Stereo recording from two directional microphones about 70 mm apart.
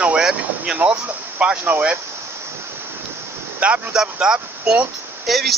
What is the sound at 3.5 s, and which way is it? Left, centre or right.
Speech, right.